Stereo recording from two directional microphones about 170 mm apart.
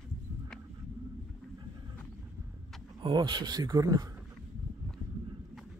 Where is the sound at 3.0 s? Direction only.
25° right (ahead or behind).